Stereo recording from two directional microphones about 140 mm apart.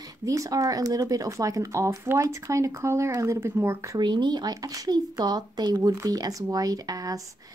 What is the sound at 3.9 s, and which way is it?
Speech, 30° right (ahead or behind).